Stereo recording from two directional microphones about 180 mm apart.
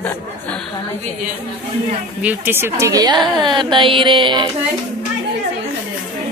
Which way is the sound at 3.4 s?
25° right (ahead or behind).